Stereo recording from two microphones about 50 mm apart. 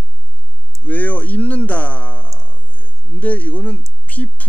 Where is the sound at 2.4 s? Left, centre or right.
Left.